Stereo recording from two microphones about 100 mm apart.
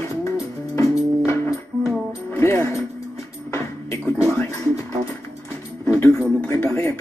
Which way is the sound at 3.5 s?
25° left (ahead or behind).